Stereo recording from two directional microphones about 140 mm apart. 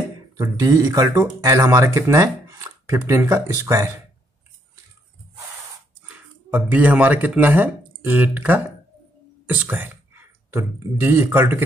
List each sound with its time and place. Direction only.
0.4 s speech: 25° right (ahead or behind)
6.0 s speech: 10° right (ahead or behind)